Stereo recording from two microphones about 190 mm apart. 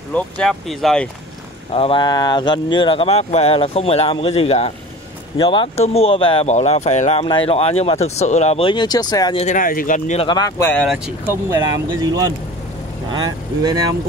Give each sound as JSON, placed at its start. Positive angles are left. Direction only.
{"t": 0.1, "sound": "speech", "side_deg": 5}
{"t": 1.7, "sound": "speech", "side_deg": 30}
{"t": 9.4, "sound": "speech", "side_deg": 45}
{"t": 10.2, "sound": "speech", "side_deg": 20}
{"t": 10.7, "sound": "speech", "side_deg": 5}
{"t": 11.1, "sound": "speech", "side_deg": -10}